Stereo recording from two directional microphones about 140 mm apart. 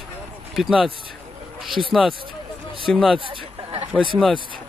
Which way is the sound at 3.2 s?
40° right (ahead or behind).